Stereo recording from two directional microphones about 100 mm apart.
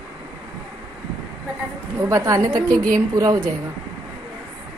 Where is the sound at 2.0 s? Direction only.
30° right (ahead or behind).